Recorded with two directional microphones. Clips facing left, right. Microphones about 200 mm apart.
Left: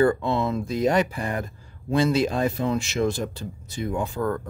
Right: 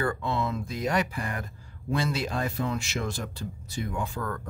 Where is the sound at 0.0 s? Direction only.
25° left (ahead or behind).